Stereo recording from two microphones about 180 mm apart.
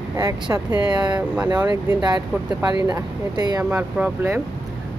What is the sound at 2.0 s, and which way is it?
Speech, 25° right (ahead or behind).